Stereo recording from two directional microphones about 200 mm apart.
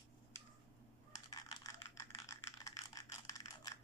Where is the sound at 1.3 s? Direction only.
15° left (ahead or behind).